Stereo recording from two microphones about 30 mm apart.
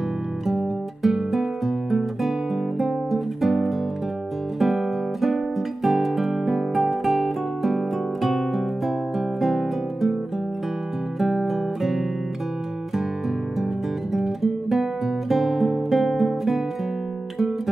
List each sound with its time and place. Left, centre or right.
0.5 s music: centre
11.1 s music: centre
14.1 s music: centre